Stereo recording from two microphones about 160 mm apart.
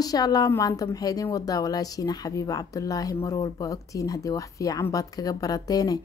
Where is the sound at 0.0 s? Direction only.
25° left (ahead or behind).